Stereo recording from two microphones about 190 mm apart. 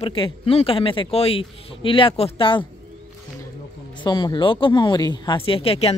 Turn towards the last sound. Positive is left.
turn(degrees=30)  # may be behind; listen again after turning